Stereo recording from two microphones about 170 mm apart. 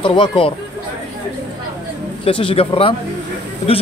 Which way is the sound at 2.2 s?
30° left (ahead or behind).